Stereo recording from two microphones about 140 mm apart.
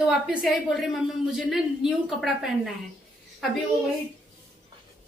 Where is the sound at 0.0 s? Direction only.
5° right (ahead or behind).